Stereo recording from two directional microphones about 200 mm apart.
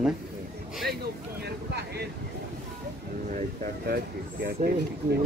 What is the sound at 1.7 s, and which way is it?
Vehicle, 55° right (ahead or behind).